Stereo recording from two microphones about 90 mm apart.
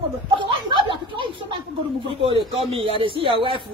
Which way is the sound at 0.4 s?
60° right (ahead or behind).